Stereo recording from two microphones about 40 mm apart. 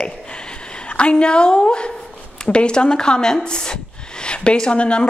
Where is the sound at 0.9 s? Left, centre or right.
Left.